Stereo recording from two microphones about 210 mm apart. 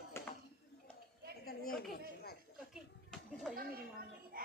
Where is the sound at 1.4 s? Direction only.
45° left (ahead or behind).